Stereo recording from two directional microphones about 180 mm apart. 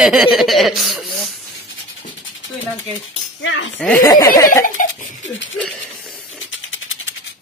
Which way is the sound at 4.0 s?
20° left (ahead or behind).